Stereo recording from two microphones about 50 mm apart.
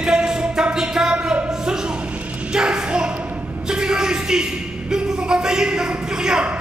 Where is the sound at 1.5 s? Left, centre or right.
Centre.